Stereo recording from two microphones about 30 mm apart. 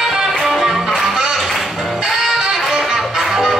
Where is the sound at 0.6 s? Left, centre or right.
Centre.